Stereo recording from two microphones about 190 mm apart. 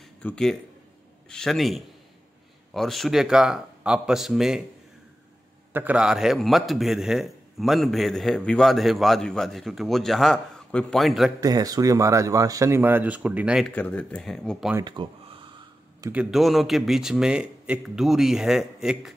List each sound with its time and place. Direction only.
0.2 s a man's voice: 5° left (ahead or behind)
5.7 s a man's voice: 10° right (ahead or behind)
11.4 s speech: 20° right (ahead or behind); by 14.7 s 5° left (ahead or behind)
15.0 s speech: 25° right (ahead or behind)
16.1 s a man's voice: 5° right (ahead or behind)